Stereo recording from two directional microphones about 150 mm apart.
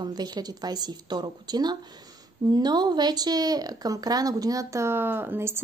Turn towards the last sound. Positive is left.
turn(degrees=-15)  # may be behind; listen again after turning